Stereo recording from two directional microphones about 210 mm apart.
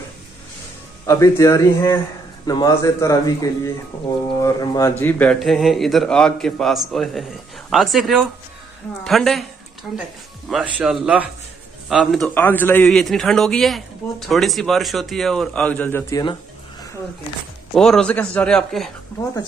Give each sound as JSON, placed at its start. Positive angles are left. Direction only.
{"t": 1.0, "sound": "speech", "side_deg": 15}
{"t": 4.4, "sound": "a man's voice", "side_deg": 15}
{"t": 10.5, "sound": "a man's voice", "side_deg": -5}
{"t": 17.7, "sound": "a man's voice", "side_deg": 5}